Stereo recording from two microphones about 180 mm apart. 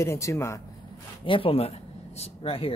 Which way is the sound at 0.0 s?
15° left (ahead or behind).